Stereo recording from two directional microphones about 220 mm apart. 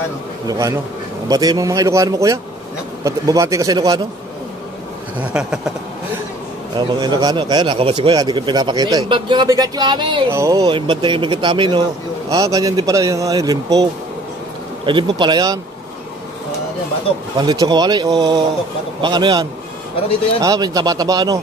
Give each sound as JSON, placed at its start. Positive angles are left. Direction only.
{"t": 0.5, "sound": "speech", "side_deg": -15}
{"t": 5.3, "sound": "a sound", "side_deg": -5}
{"t": 7.0, "sound": "speech", "side_deg": -20}
{"t": 14.9, "sound": "speech", "side_deg": -20}
{"t": 17.4, "sound": "speech", "side_deg": -20}